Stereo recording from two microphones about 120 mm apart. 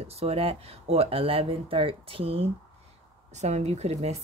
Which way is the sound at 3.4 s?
70° right (ahead or behind).